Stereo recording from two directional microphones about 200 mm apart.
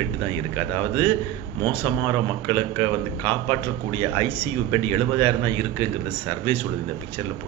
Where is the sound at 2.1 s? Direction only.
25° right (ahead or behind).